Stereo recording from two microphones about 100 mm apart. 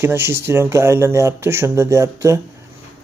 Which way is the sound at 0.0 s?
25° right (ahead or behind).